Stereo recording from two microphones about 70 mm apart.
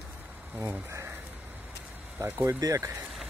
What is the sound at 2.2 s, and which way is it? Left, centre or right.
Speech, right.